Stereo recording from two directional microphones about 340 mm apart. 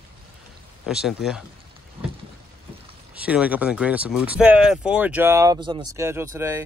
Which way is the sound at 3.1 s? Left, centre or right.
Centre.